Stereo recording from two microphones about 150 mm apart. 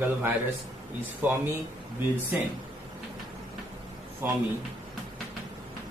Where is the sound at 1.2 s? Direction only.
15° right (ahead or behind).